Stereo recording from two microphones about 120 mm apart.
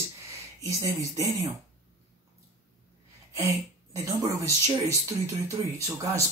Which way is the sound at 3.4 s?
25° right (ahead or behind).